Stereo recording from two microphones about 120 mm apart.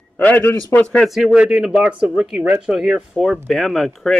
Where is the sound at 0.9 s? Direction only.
Centre (ahead or behind).